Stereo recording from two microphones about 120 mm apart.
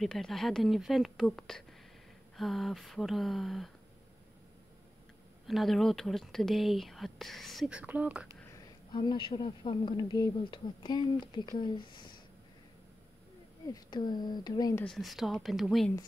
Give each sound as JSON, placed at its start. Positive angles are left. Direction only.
{"t": 0.0, "sound": "speech", "side_deg": 5}
{"t": 5.5, "sound": "speech", "side_deg": 0}
{"t": 7.7, "sound": "speech", "side_deg": -10}
{"t": 8.9, "sound": "speech", "side_deg": 40}
{"t": 13.7, "sound": "speech", "side_deg": 35}
{"t": 14.9, "sound": "speech", "side_deg": 0}